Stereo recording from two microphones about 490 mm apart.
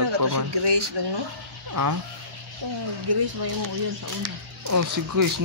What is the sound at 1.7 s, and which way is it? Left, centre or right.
Speech, right.